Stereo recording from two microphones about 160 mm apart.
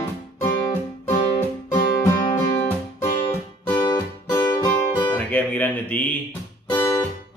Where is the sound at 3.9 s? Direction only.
15° left (ahead or behind).